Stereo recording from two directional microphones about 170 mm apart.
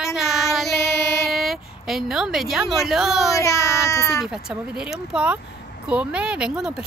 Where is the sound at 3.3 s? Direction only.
20° left (ahead or behind).